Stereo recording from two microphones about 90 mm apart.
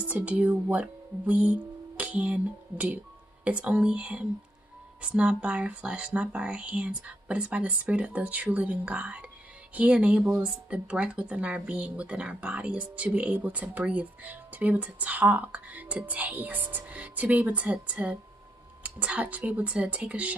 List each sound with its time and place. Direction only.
0.0 s speech: 15° right (ahead or behind)